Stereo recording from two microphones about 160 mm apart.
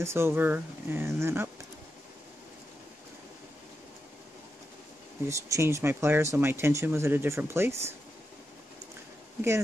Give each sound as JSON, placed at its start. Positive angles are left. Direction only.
{"t": 0.0, "sound": "speech", "side_deg": -15}
{"t": 5.3, "sound": "speech", "side_deg": -20}